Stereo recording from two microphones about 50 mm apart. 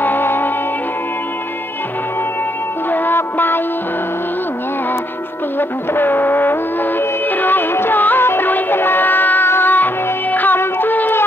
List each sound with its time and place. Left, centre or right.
0.0 s music: left
2.9 s music: left
5.6 s music: left